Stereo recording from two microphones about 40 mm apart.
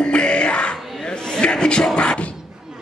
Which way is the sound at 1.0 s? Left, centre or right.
Centre.